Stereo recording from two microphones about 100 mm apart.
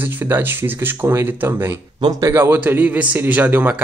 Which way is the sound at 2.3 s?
20° right (ahead or behind).